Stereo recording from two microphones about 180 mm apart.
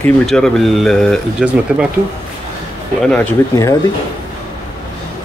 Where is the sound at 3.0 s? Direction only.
5° left (ahead or behind).